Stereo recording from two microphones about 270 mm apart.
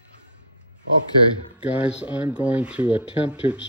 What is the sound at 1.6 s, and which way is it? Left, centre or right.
Speech, centre.